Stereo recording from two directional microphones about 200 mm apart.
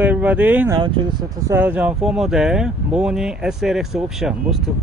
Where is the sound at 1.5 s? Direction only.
10° right (ahead or behind).